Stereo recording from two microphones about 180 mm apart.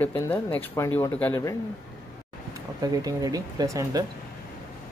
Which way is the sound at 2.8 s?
20° right (ahead or behind).